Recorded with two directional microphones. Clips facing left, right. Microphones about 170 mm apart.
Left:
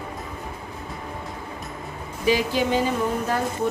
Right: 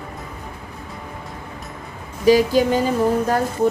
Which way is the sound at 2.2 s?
40° right (ahead or behind).